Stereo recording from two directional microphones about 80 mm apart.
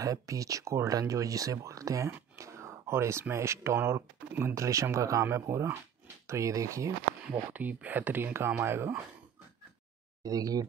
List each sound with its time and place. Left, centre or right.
0.0 s speech: right
4.6 s speech: right
7.5 s speech: right
10.2 s speech: right